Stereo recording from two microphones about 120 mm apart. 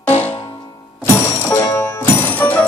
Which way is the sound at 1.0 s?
20° left (ahead or behind).